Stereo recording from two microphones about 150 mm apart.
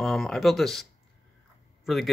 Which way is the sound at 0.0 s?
5° left (ahead or behind).